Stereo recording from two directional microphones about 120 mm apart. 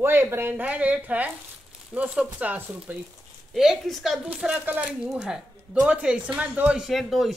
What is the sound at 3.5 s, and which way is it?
Speech, centre (ahead or behind).